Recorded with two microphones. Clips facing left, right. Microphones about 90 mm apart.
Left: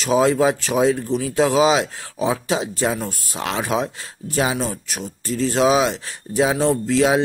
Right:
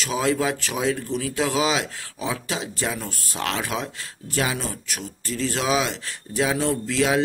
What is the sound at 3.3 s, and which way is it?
Speech, 10° left (ahead or behind).